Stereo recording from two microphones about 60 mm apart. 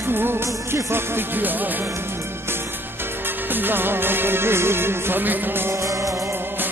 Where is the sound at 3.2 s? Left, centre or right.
Right.